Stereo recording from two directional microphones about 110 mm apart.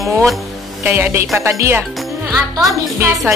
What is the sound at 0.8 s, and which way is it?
Speech, 20° right (ahead or behind).